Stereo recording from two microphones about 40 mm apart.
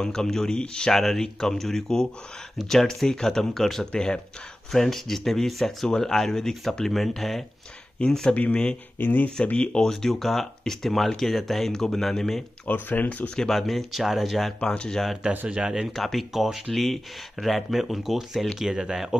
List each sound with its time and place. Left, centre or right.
0.0 s speech: centre
0.9 s speech: centre
3.9 s speech: left
4.7 s speech: centre
8.0 s speech: left
8.9 s speech: left
9.4 s speech: left
9.8 s speech: centre
12.6 s speech: left
13.5 s speech: centre
15.4 s speech: right
15.9 s speech: centre
18.6 s speech: centre